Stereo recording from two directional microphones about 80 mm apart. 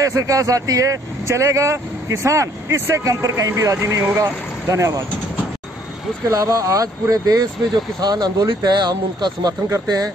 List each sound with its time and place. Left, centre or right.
0.0 s speech: right
6.3 s speech: right